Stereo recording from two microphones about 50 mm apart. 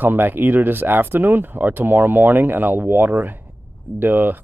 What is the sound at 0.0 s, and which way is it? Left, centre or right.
Speech, right.